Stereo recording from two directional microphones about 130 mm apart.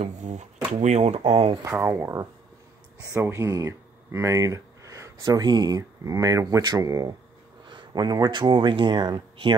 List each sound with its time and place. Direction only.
0.0 s speech: 65° right (ahead or behind)
1.6 s speech: 20° right (ahead or behind); by 9.6 s 35° right (ahead or behind)